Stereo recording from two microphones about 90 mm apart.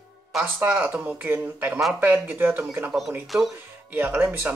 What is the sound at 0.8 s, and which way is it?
Speech, 25° right (ahead or behind).